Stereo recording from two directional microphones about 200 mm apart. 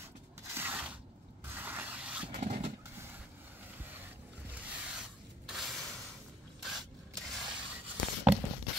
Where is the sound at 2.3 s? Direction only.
35° right (ahead or behind).